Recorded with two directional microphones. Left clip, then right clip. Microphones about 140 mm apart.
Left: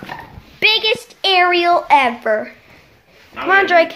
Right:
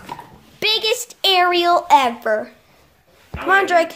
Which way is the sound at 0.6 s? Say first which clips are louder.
Left 4 dB; 25° right (ahead or behind).